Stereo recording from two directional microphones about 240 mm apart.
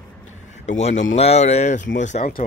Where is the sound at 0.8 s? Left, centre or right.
Left.